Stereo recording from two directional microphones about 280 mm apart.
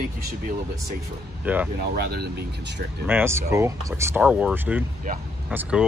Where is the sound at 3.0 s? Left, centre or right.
Centre.